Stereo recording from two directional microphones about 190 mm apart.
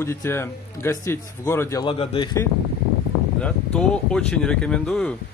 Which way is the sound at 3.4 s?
5° left (ahead or behind).